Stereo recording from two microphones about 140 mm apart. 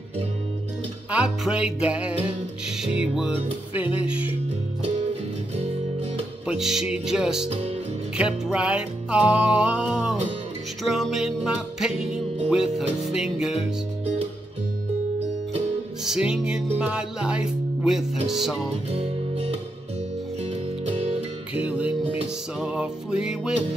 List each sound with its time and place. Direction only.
1.1 s music: 5° right (ahead or behind)
6.4 s music: 5° right (ahead or behind)
16.0 s music: 5° right (ahead or behind)
18.9 s music: 45° right (ahead or behind)
20.8 s music: 50° right (ahead or behind)
21.5 s music: 10° right (ahead or behind)